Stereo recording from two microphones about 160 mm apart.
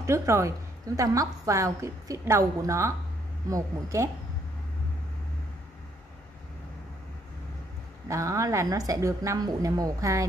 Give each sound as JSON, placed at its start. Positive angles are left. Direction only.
{"t": 0.0, "sound": "a woman's voice", "side_deg": -20}
{"t": 8.1, "sound": "a woman's voice", "side_deg": -20}